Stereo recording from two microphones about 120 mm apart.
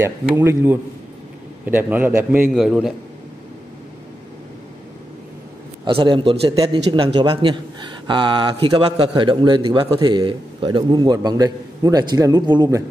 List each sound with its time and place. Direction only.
0.0 s a man's voice: 20° right (ahead or behind)
2.5 s a man's voice: 5° right (ahead or behind)
5.9 s a man's voice: 50° right (ahead or behind)